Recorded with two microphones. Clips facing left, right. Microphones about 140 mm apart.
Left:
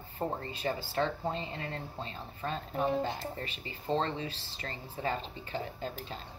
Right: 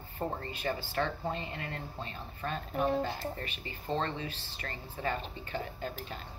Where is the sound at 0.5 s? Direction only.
30° left (ahead or behind).